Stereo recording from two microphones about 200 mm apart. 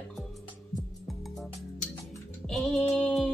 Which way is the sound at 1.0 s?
Centre (ahead or behind).